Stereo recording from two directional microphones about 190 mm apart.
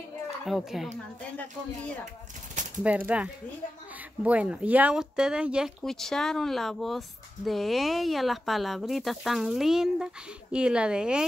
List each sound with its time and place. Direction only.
0.5 s speech: centre (ahead or behind)
2.8 s speech: 5° right (ahead or behind)